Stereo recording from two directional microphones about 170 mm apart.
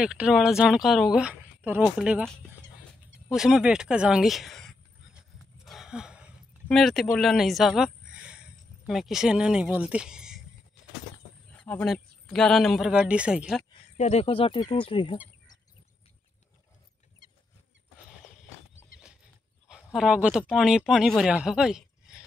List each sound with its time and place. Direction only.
0.0 s speech: 5° right (ahead or behind)
5.7 s a sound: 5° right (ahead or behind)
8.8 s speech: centre (ahead or behind)
11.5 s speech: 5° left (ahead or behind)
13.9 s speech: 40° left (ahead or behind)
19.7 s speech: 5° right (ahead or behind)